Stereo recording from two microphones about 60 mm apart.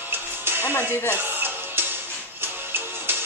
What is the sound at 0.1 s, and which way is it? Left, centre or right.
Music, right.